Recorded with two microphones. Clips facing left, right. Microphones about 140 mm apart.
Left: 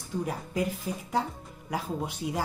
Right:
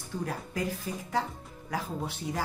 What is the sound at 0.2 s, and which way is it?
Speech, 15° left (ahead or behind).